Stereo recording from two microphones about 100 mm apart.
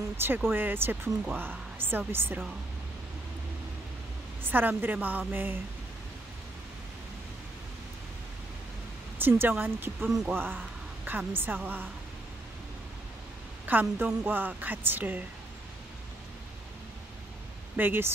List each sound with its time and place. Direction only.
0.5 s speech: 20° right (ahead or behind)
4.4 s a woman's voice: 20° right (ahead or behind)
9.2 s speech: 20° right (ahead or behind)
13.7 s speech: 20° right (ahead or behind)
17.7 s speech: 20° right (ahead or behind)